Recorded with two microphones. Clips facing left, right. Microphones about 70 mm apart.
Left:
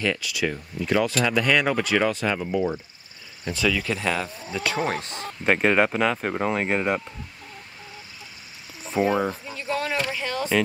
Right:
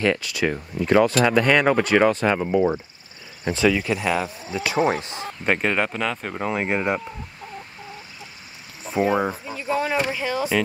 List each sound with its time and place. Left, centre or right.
0.0 s speech: right
3.4 s speech: right
3.8 s speech: centre
5.4 s speech: centre
6.5 s speech: centre
8.9 s speech: centre